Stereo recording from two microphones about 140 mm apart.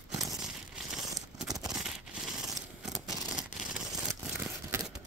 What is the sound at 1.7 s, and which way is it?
Scissors, 5° right (ahead or behind).